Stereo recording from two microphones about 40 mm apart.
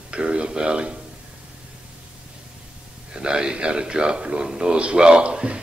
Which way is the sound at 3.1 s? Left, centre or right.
Right.